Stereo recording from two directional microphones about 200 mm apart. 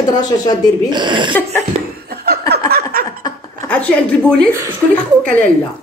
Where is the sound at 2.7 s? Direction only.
45° right (ahead or behind).